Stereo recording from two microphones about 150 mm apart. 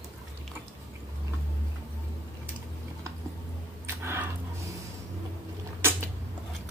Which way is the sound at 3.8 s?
15° right (ahead or behind).